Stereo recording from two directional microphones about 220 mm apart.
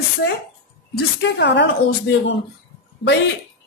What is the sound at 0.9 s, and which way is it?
Speech, 50° left (ahead or behind).